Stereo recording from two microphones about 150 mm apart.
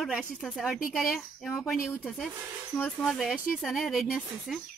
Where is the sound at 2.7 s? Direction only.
5° left (ahead or behind).